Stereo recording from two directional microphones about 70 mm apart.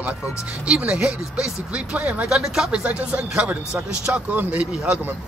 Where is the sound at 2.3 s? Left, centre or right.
Centre.